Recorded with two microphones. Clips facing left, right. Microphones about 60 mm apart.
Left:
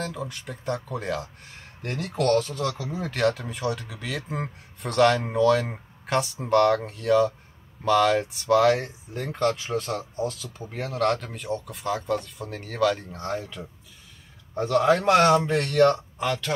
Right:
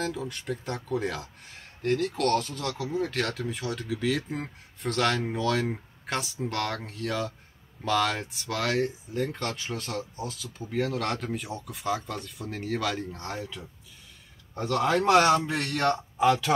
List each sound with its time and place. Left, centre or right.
0.0 s speech: centre